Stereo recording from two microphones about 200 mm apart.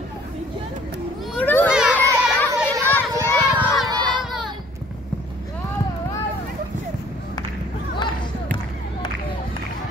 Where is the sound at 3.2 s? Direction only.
15° left (ahead or behind).